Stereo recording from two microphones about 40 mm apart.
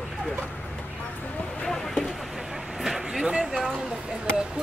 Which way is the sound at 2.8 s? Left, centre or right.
Centre.